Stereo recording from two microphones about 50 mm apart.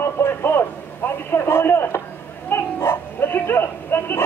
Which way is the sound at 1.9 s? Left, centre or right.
Left.